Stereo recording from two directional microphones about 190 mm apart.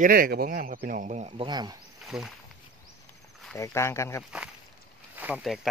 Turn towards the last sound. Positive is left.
turn(degrees=-5)  # may be behind; listen again after turning